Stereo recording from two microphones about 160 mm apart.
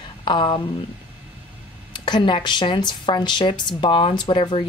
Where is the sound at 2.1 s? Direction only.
30° left (ahead or behind).